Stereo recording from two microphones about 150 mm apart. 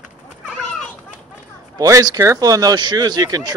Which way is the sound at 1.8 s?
25° right (ahead or behind).